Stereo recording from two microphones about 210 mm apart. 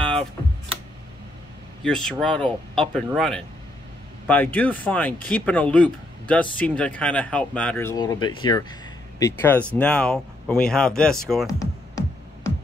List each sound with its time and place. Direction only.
0.0 s a sound: 5° left (ahead or behind)
1.9 s speech: 5° left (ahead or behind)
7.9 s speech: 20° left (ahead or behind)
9.2 s speech: 10° left (ahead or behind)
11.4 s music: 15° left (ahead or behind)